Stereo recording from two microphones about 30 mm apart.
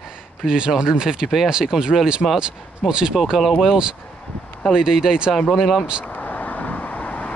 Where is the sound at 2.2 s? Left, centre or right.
Left.